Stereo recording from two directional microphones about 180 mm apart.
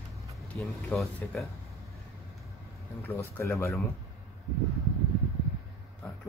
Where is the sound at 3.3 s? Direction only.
15° left (ahead or behind).